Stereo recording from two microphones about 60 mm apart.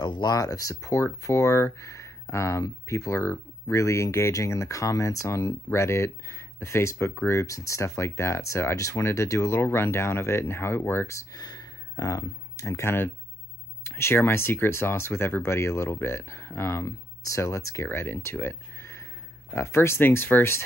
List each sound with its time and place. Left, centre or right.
0.3 s speech: left
11.1 s a sound: left
12.6 s speech: left
13.8 s speech: left
17.8 s speech: left